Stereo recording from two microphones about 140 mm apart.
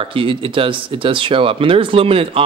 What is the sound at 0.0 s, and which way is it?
Speech, 40° right (ahead or behind).